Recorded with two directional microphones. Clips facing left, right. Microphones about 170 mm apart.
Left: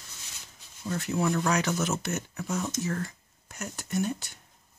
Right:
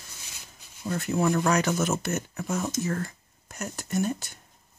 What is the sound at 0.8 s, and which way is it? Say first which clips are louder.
Speech: right 3 dB; 50° right (ahead or behind).